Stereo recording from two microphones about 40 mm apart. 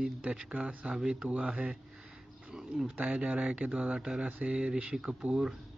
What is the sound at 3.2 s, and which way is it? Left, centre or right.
Speech, right.